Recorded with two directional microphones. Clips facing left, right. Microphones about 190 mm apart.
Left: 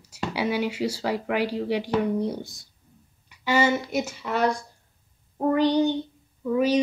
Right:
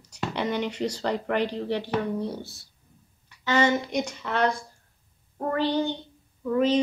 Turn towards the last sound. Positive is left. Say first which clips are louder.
# left 1 dB
turn(degrees=10)  # may be behind; listen again after turning